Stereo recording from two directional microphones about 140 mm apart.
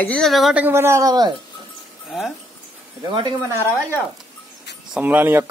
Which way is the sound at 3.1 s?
35° right (ahead or behind).